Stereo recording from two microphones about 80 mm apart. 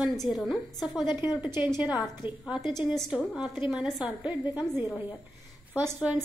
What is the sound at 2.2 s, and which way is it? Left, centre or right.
Speech, left.